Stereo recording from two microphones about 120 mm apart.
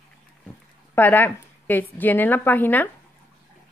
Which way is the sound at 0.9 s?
15° left (ahead or behind).